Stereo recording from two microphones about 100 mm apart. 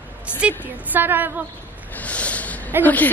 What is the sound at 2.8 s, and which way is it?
Speech, 20° left (ahead or behind).